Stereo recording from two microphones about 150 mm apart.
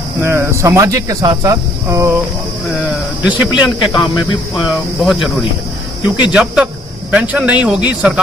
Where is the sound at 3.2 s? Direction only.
5° right (ahead or behind).